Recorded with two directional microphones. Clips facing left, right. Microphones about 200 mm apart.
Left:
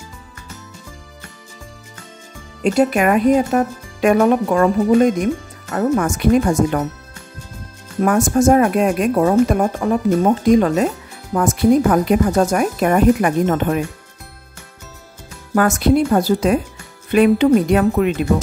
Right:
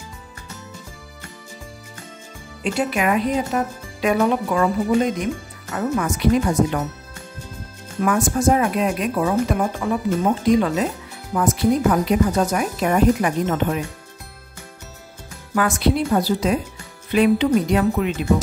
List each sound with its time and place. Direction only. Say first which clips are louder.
2.6 s speech: left 6 dB; 45° left (ahead or behind)
8.0 s speech: left 4 dB; 45° left (ahead or behind)
15.5 s speech: left 5 dB; 45° left (ahead or behind)